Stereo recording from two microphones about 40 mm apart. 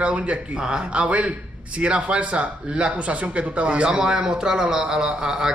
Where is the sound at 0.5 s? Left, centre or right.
Centre.